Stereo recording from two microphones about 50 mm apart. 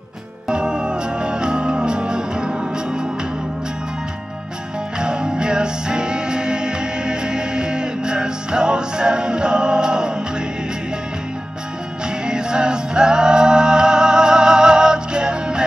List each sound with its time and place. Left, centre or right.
0.5 s music: centre
4.9 s music: centre
12.3 s music: centre